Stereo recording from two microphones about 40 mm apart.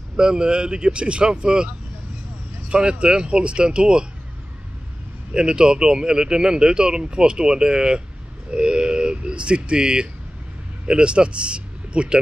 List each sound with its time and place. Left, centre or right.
0.2 s speech: centre
2.7 s speech: right
5.3 s speech: right
8.5 s a sound: right
10.9 s speech: right